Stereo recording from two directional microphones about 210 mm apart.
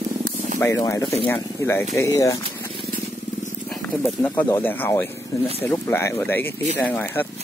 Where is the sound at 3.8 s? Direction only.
10° left (ahead or behind).